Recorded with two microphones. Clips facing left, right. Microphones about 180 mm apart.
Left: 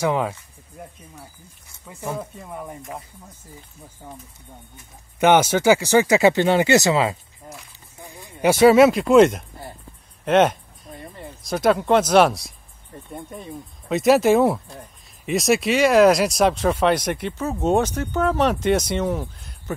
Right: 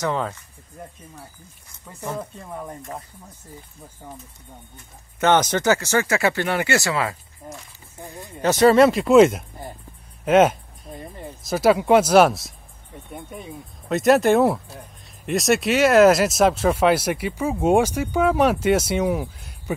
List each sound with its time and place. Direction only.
0.0 s speech: 10° left (ahead or behind)
2.0 s speech: 5° left (ahead or behind)
5.2 s speech: 10° left (ahead or behind)
8.3 s speech: 10° left (ahead or behind)
10.2 s a sound: 5° right (ahead or behind)
11.4 s speech: 5° right (ahead or behind)